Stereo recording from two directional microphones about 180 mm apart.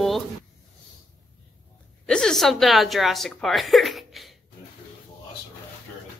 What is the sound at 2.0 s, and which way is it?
Speech, 5° left (ahead or behind).